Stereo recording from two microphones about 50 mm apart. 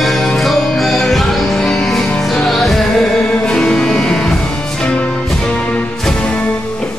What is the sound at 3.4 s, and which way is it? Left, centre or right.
Music, centre.